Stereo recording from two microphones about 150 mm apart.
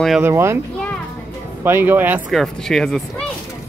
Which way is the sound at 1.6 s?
15° right (ahead or behind).